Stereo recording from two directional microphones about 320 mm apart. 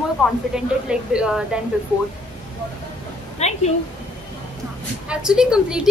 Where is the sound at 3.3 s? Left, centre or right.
Centre.